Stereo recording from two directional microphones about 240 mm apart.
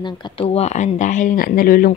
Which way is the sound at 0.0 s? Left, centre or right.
Left.